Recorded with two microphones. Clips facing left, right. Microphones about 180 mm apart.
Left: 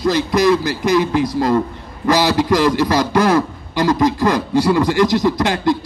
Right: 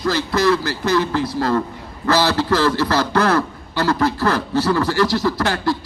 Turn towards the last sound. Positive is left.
turn(degrees=20)  # may be behind; listen again after turning